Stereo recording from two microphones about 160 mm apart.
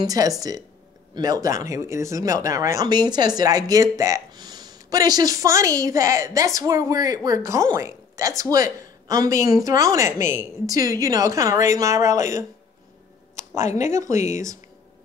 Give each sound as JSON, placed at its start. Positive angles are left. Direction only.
{"t": 0.0, "sound": "speech", "side_deg": -20}
{"t": 14.1, "sound": "speech", "side_deg": 50}